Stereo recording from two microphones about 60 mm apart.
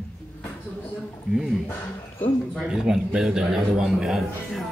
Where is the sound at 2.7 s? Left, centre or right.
Centre.